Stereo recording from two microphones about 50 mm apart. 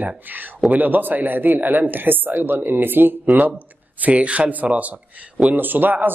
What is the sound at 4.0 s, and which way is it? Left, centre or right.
Speech, right.